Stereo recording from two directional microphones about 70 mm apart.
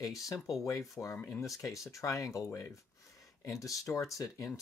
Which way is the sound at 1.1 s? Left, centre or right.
Left.